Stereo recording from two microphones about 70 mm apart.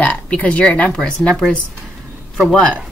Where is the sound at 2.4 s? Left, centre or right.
Centre.